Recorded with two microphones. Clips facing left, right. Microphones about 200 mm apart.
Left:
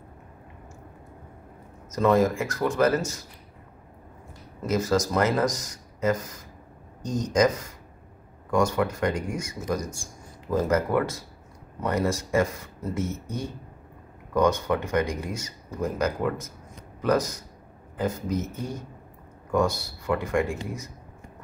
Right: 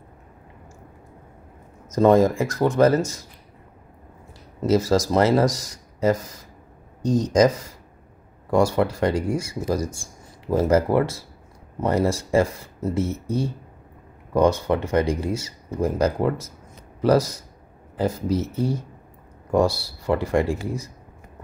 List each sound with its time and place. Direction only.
2.0 s speech: 30° right (ahead or behind)
4.6 s speech: 30° right (ahead or behind)